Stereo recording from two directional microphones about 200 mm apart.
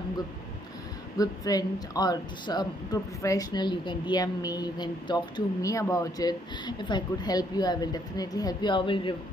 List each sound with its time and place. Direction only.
1.1 s speech: 20° left (ahead or behind)